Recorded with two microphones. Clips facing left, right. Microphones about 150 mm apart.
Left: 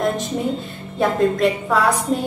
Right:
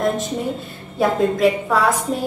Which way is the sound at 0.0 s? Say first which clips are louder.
Even; centre (ahead or behind).